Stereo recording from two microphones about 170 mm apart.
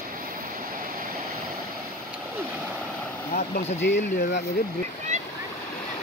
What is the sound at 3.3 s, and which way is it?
Speech, 75° left (ahead or behind).